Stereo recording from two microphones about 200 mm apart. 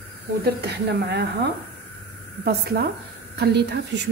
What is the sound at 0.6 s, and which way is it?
Speech, 55° right (ahead or behind).